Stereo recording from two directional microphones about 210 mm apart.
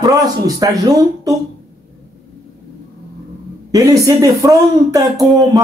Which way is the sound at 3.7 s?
15° right (ahead or behind).